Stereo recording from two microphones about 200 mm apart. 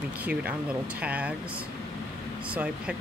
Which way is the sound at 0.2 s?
5° right (ahead or behind).